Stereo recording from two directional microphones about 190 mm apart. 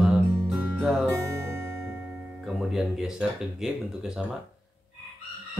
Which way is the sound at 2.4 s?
Centre (ahead or behind).